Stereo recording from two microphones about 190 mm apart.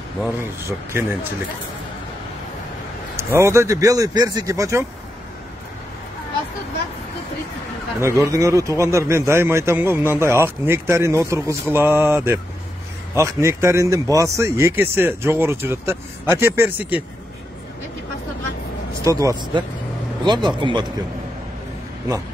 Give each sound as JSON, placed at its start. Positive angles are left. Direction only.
{"t": 0.2, "sound": "a man's voice", "side_deg": -10}
{"t": 3.2, "sound": "a man's voice", "side_deg": -15}
{"t": 8.2, "sound": "a man's voice", "side_deg": -15}
{"t": 19.0, "sound": "a man's voice", "side_deg": -15}